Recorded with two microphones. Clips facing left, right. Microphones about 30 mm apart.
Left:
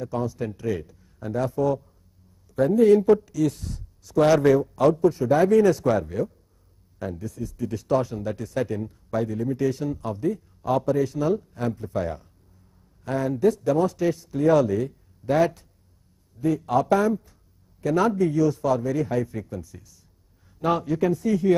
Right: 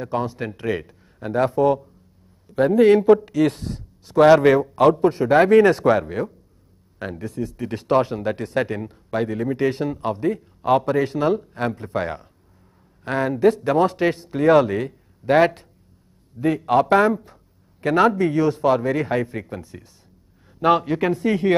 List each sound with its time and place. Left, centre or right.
0.0 s a man's voice: right